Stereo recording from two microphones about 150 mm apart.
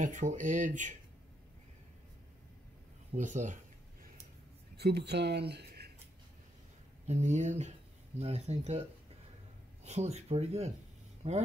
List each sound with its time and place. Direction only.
0.0 s speech: 55° right (ahead or behind)
3.1 s speech: 55° right (ahead or behind)
4.7 s speech: 90° right
7.1 s speech: 50° right (ahead or behind)
9.8 s speech: 45° right (ahead or behind)